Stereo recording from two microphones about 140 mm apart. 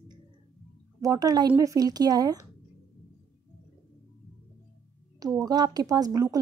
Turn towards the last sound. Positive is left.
turn(degrees=-25)  # may be behind; listen again after turning